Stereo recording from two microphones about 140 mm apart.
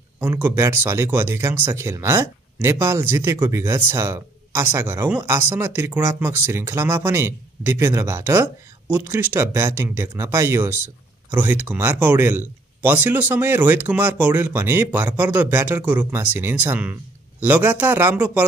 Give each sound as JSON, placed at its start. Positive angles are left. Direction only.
{"t": 0.2, "sound": "speech", "side_deg": -15}